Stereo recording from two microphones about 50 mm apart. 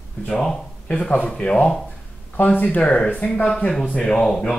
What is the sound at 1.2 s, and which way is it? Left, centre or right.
Speech, centre.